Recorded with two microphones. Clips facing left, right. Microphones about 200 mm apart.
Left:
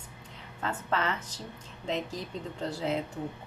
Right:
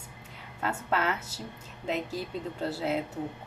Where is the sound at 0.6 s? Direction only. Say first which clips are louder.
Right 1 dB; 10° right (ahead or behind).